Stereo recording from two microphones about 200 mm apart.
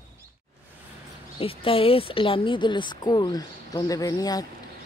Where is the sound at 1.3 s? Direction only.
25° left (ahead or behind).